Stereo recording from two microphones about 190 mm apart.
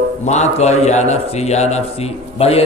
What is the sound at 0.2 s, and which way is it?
A man's voice, 35° left (ahead or behind).